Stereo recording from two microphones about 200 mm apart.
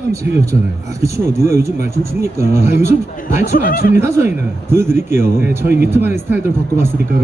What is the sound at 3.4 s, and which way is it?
Speech, 45° left (ahead or behind).